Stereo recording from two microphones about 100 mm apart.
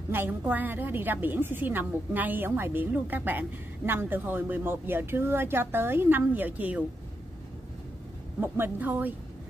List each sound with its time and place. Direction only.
0.1 s a woman's voice: 20° right (ahead or behind)
8.4 s a woman's voice: 20° right (ahead or behind)